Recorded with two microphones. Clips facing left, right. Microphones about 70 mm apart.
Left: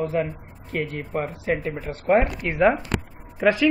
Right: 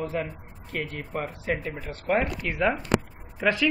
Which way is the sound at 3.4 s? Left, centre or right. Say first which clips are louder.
Left 5 dB; centre.